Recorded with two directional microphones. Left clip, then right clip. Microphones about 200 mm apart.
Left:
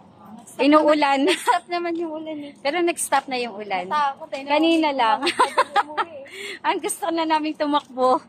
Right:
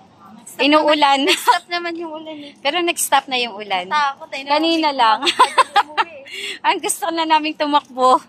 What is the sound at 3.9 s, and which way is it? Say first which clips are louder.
Speech: right 3 dB; 25° left (ahead or behind).